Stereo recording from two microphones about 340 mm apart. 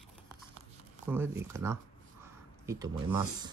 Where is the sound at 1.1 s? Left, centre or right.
Centre.